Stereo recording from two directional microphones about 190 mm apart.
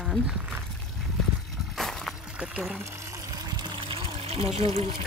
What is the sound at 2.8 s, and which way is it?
Water, 15° right (ahead or behind).